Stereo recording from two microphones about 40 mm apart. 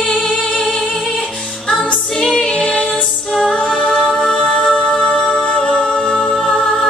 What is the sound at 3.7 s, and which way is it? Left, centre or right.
Music, centre.